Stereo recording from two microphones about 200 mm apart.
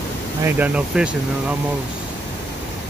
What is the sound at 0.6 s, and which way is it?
Speech, 5° right (ahead or behind).